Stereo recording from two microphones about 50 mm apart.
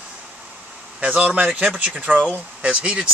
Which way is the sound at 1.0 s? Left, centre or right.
Right.